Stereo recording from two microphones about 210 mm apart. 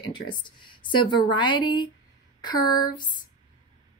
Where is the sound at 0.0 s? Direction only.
20° left (ahead or behind).